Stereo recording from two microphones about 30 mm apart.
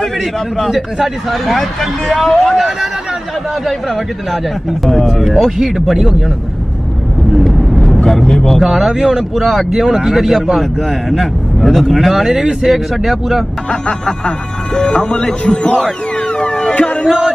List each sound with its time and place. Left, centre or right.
1.0 s speech: centre
5.6 s speech: centre
7.3 s vehicle: centre
8.0 s speech: centre
8.6 s speech: centre
9.7 s speech: right
10.1 s speech: centre
10.6 s speech: centre
13.7 s speech: left
16.3 s music: left